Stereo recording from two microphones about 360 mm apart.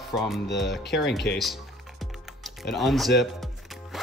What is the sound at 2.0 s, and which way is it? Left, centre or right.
Music, centre.